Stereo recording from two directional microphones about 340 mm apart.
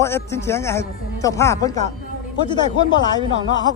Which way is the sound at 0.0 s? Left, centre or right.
Centre.